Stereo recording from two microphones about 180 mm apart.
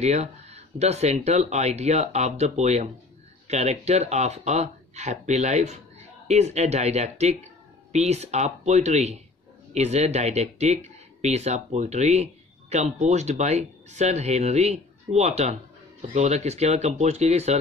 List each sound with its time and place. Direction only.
0.0 s speech: 35° right (ahead or behind)